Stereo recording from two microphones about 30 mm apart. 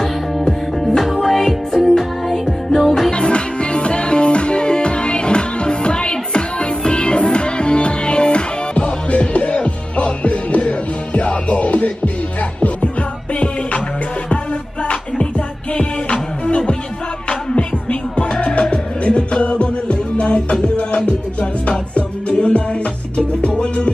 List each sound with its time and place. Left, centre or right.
0.7 s music: centre
3.1 s music: left